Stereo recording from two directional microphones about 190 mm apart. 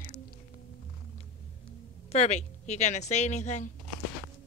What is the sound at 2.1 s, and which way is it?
A woman's voice, 35° left (ahead or behind).